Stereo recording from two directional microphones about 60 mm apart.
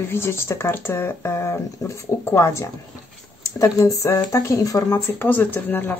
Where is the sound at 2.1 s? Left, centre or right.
Left.